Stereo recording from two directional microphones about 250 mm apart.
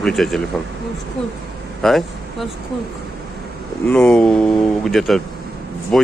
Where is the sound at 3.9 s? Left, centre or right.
Centre.